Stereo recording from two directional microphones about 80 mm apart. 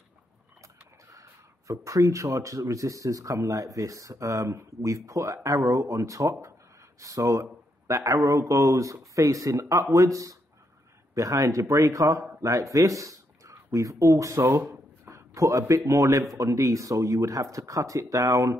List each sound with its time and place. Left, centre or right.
1.1 s speech: right
14.7 s a sound: right
15.7 s speech: right